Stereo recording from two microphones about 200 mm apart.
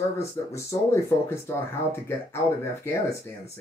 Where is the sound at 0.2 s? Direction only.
15° left (ahead or behind).